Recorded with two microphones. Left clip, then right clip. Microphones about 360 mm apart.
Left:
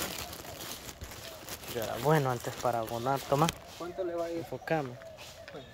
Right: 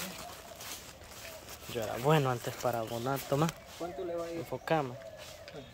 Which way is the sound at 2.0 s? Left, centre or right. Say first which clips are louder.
Left 1 dB; centre.